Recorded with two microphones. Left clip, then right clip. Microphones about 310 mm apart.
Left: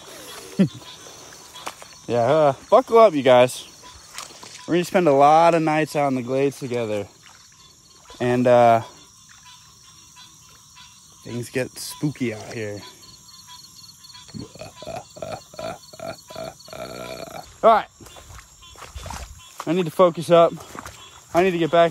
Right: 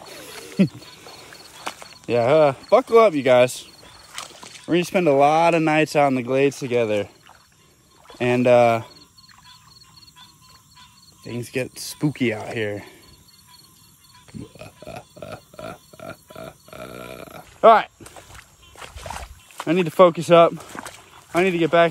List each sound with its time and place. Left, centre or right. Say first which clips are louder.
0.1 s wild animals: left 1 dB; centre
1.6 s a sound: right 2 dB; right
2.0 s speech: right 1 dB; centre
4.1 s mechanisms: right 2 dB; right
4.6 s speech: even; centre
8.2 s speech: even; centre
11.2 s speech: even; centre
14.9 s a sound: left 4 dB; centre
18.3 s a sound: left 1 dB; right
19.7 s speech: right 3 dB; centre
20.7 s a sound: right 2 dB; right
21.3 s speech: even; centre